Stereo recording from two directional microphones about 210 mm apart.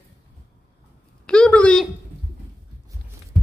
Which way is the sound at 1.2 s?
5° left (ahead or behind).